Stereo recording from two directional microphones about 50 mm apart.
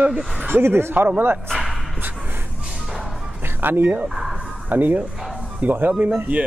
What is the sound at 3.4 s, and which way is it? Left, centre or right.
Speech, right.